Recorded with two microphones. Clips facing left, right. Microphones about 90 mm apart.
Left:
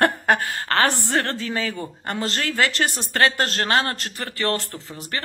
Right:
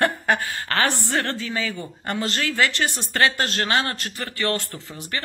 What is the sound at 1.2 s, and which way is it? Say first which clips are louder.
Speech: left 2 dB; 40° left (ahead or behind).